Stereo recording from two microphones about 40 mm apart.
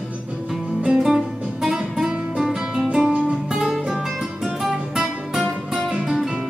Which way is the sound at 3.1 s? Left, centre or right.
Right.